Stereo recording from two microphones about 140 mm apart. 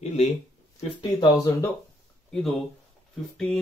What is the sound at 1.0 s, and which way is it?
Speech, 30° left (ahead or behind).